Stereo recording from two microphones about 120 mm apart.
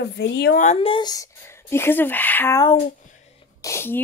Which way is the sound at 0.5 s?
80° left.